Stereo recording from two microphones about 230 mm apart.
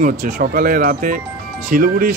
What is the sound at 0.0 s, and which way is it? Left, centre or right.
Speech, right.